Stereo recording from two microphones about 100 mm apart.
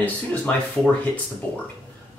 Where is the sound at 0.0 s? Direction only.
15° left (ahead or behind).